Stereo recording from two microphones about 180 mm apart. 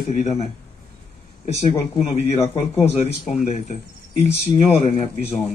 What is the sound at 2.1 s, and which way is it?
Speech, 35° left (ahead or behind).